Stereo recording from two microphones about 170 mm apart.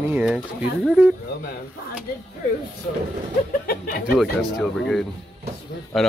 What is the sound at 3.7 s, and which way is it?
Speech, 60° left (ahead or behind).